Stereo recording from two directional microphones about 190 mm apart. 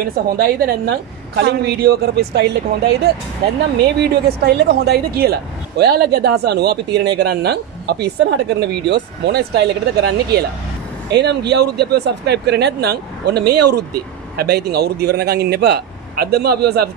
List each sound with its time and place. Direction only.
0.0 s speech: 50° right (ahead or behind)
4.0 s speech: 60° right (ahead or behind)